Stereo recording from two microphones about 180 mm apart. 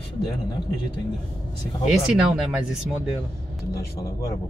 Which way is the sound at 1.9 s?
5° right (ahead or behind).